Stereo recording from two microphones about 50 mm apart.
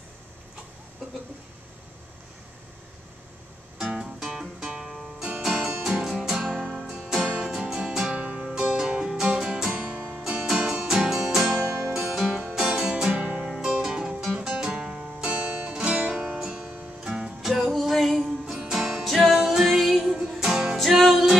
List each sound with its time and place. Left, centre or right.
3.7 s music: centre
6.4 s music: centre
6.7 s music: centre
7.3 s music: right
7.7 s music: centre
9.7 s music: right
10.1 s music: centre
20.7 s music: centre